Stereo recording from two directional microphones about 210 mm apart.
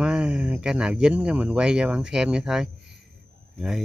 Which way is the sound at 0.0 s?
5° right (ahead or behind).